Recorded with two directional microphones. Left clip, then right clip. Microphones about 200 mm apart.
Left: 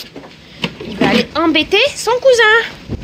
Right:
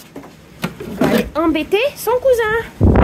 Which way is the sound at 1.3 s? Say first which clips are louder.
Left 3 dB; 5° right (ahead or behind).